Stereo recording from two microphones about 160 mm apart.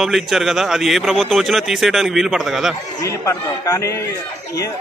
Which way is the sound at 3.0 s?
20° left (ahead or behind).